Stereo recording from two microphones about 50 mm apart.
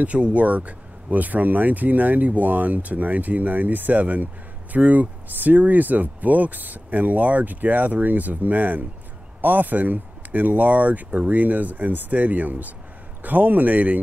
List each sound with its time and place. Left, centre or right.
0.0 s speech: right